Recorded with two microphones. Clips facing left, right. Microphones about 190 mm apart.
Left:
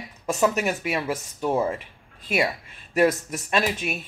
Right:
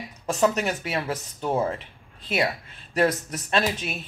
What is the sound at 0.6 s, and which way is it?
Speech, 10° left (ahead or behind).